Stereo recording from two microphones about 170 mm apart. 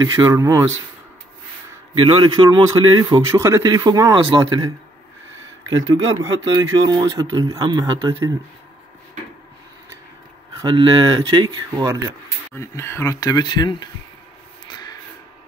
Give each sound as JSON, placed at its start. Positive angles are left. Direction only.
{"t": 0.0, "sound": "speech", "side_deg": -20}
{"t": 2.0, "sound": "a man's voice", "side_deg": -35}
{"t": 6.2, "sound": "speech", "side_deg": -20}
{"t": 10.6, "sound": "speech", "side_deg": -30}
{"t": 12.5, "sound": "speech", "side_deg": 15}
{"t": 14.7, "sound": "a sound", "side_deg": 25}